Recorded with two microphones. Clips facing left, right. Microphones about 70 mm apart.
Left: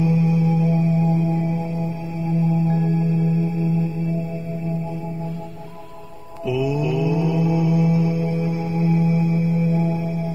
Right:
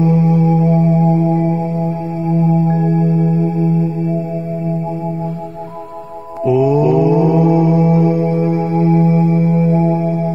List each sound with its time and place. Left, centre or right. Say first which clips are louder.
0.0 s music: right 6 dB; right
2.3 s singing bowl: right 6 dB; right
6.4 s mantra: right 10 dB; right